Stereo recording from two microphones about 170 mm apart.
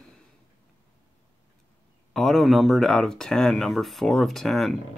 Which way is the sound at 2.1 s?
Centre (ahead or behind).